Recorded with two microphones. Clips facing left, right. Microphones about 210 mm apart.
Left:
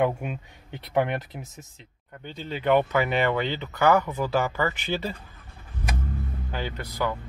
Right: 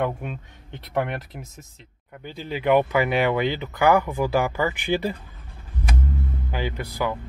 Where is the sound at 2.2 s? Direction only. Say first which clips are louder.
Right 2 dB; 10° right (ahead or behind).